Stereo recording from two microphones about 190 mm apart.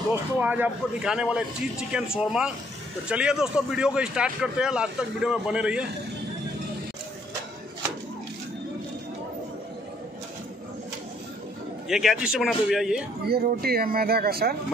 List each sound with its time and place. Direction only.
0.1 s a man's voice: 10° right (ahead or behind)
11.9 s a man's voice: centre (ahead or behind)
13.3 s speech: 55° right (ahead or behind)